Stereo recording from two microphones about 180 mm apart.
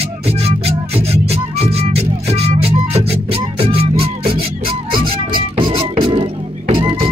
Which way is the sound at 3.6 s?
30° right (ahead or behind).